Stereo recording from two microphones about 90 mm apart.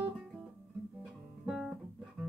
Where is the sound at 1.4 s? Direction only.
10° right (ahead or behind).